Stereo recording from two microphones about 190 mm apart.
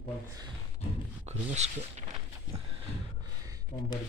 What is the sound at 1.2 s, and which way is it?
Speech, 35° right (ahead or behind).